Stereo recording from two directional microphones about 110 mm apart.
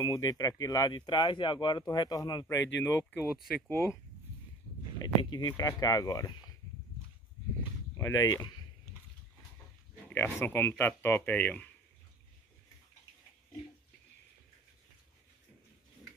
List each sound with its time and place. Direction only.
0.0 s speech: 35° left (ahead or behind)
2.4 s speech: 20° left (ahead or behind)
3.2 s speech: centre (ahead or behind)
4.9 s speech: 40° left (ahead or behind)
8.0 s speech: 30° left (ahead or behind)
10.1 s speech: 20° left (ahead or behind)